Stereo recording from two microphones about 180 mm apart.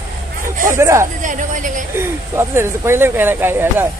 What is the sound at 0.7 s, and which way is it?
Speech, 15° right (ahead or behind).